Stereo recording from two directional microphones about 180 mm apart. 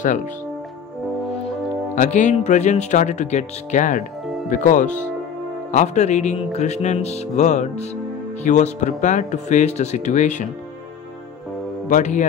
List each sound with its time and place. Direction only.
2.0 s speech: 40° left (ahead or behind)
11.9 s speech: 40° left (ahead or behind)